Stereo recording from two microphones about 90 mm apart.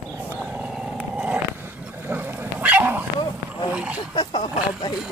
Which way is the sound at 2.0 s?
20° right (ahead or behind).